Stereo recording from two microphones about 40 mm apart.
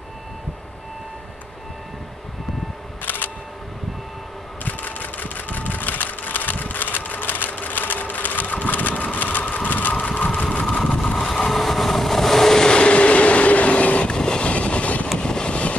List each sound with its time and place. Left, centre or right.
3.0 s single-lens reflex camera: left
4.6 s sewing machine: left
10.4 s vehicle: left
11.5 s vehicle: centre; by 14.1 s left
14.1 s train: centre
14.5 s vehicle: left
15.1 s vehicle: left